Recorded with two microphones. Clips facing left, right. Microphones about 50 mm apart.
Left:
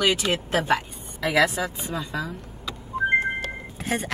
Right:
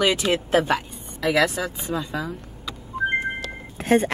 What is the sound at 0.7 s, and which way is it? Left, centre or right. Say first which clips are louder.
Speech: left 1 dB; centre.